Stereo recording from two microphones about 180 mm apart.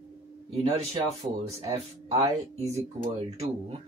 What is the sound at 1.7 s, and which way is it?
Speech, 40° right (ahead or behind).